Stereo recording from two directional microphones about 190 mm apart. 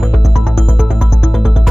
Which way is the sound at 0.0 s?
Centre (ahead or behind).